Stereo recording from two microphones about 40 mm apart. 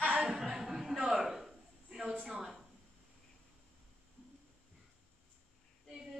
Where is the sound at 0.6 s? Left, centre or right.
Centre.